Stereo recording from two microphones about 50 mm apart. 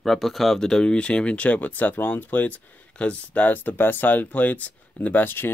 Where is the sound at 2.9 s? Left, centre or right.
Left.